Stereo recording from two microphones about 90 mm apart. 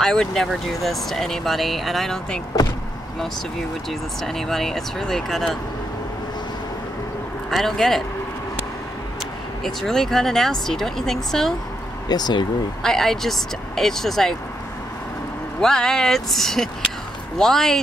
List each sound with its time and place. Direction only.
0.0 s speech: 5° left (ahead or behind)
4.2 s speech: 5° left (ahead or behind)
7.5 s speech: 5° left (ahead or behind)
9.6 s speech: 5° left (ahead or behind)
12.1 s speech: 50° left (ahead or behind)
12.8 s speech: 5° left (ahead or behind)
15.6 s speech: 5° left (ahead or behind)